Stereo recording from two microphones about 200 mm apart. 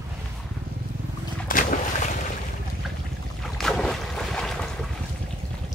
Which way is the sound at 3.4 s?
Centre (ahead or behind).